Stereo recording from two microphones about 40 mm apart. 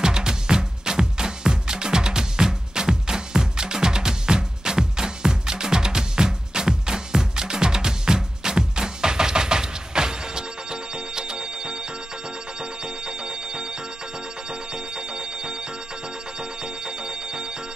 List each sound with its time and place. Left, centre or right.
0.0 s music: centre